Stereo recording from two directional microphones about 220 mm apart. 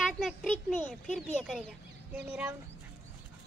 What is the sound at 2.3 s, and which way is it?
Speech, 10° right (ahead or behind).